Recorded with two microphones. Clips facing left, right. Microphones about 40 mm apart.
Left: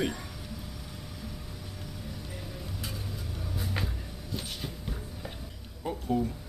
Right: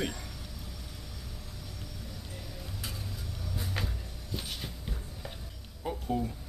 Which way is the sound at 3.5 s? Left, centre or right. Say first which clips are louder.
Left 2 dB; centre.